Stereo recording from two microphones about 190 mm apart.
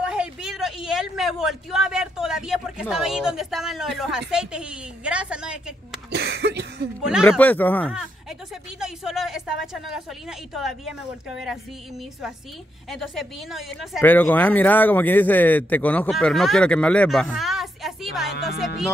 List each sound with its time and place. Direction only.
0.0 s a man's voice: 5° right (ahead or behind)
6.0 s cough: 60° right (ahead or behind)
7.2 s speech: 10° left (ahead or behind)
8.7 s speech: 5° right (ahead or behind)
12.9 s speech: centre (ahead or behind)